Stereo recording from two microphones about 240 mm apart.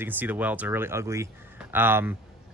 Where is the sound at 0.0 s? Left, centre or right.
Centre.